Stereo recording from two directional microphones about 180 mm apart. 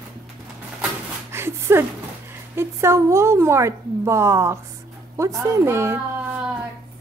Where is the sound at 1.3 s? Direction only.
15° right (ahead or behind).